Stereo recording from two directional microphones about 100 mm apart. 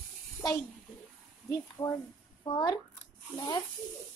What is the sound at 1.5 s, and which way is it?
Speech, 45° left (ahead or behind).